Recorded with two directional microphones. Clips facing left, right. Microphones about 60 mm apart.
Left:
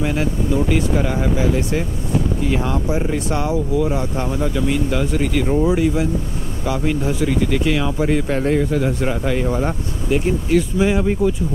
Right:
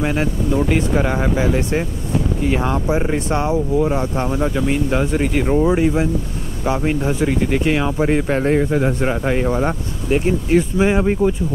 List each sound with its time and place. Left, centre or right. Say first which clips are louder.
0.0 s speech: right 1 dB; right
2.5 s speech: right 3 dB; right